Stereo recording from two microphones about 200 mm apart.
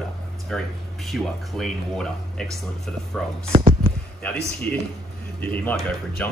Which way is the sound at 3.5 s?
30° right (ahead or behind).